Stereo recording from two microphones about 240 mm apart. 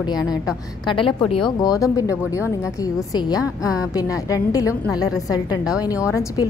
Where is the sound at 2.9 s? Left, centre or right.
Centre.